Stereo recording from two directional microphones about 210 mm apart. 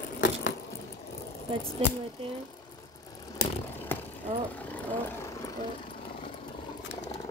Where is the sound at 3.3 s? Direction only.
15° left (ahead or behind).